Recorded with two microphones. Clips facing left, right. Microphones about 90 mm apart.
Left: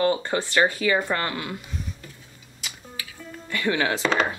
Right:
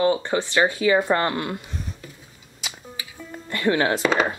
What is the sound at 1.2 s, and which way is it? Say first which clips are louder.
Speech: right 5 dB; 35° right (ahead or behind).